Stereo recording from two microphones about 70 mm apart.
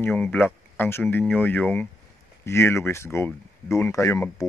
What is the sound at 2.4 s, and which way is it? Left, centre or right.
Speech, left.